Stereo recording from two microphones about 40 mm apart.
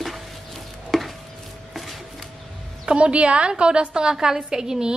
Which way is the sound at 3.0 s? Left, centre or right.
Right.